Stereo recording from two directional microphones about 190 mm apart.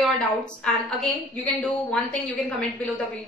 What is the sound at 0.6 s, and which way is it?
A woman's voice, 5° left (ahead or behind).